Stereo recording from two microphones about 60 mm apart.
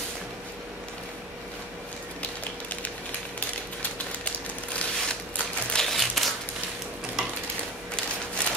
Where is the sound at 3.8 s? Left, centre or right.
Left.